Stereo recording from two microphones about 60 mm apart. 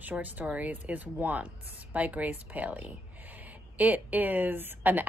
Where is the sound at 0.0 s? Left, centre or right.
Right.